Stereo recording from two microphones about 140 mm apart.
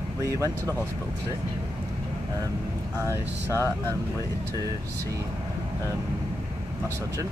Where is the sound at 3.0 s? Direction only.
20° right (ahead or behind).